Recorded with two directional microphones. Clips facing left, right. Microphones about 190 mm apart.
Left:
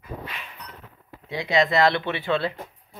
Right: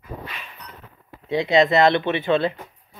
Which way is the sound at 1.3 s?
25° right (ahead or behind).